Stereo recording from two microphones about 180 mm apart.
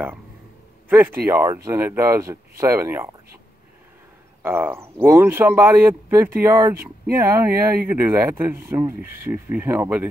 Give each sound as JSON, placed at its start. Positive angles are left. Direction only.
{"t": 0.8, "sound": "speech", "side_deg": -10}
{"t": 4.4, "sound": "speech", "side_deg": -10}